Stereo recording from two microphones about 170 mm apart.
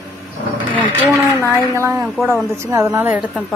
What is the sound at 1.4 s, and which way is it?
A woman's voice, 15° right (ahead or behind).